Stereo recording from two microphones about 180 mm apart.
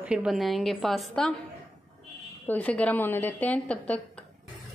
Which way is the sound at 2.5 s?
10° left (ahead or behind).